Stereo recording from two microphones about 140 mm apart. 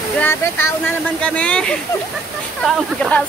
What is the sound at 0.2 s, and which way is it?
Speech, 15° left (ahead or behind).